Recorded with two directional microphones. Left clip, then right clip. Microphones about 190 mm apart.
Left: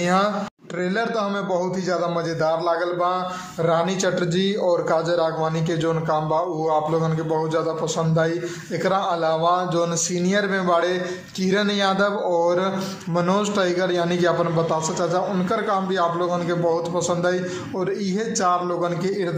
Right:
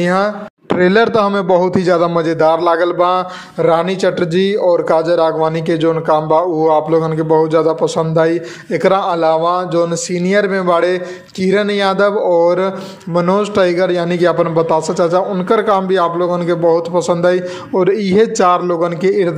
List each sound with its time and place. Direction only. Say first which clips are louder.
0.0 s a man's voice: right 6 dB; 40° right (ahead or behind)